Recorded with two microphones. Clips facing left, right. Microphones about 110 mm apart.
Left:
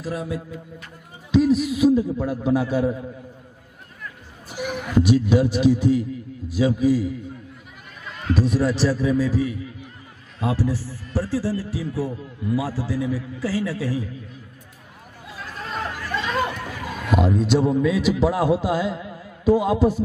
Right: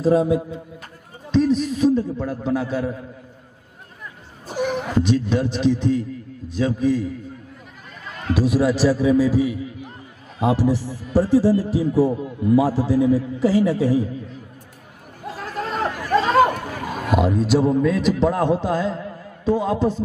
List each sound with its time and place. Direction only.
0.0 s a man's voice: 30° right (ahead or behind)
1.3 s a man's voice: 5° left (ahead or behind)
4.5 s a sound: 45° right (ahead or behind)
4.9 s a man's voice: 10° left (ahead or behind)
8.3 s a man's voice: 10° right (ahead or behind); by 14.0 s 25° right (ahead or behind)
15.2 s chatter: 45° right (ahead or behind)
17.2 s a man's voice: centre (ahead or behind)